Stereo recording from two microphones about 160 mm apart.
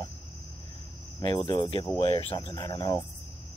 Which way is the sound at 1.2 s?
30° left (ahead or behind).